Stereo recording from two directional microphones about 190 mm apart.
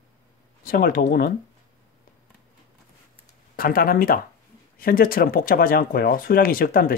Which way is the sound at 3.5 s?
50° left (ahead or behind).